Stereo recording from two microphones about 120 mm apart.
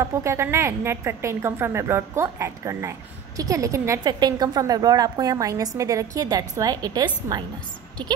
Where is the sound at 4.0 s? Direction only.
35° right (ahead or behind).